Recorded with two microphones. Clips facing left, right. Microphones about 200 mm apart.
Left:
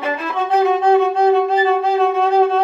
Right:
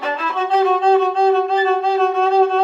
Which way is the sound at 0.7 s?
15° left (ahead or behind).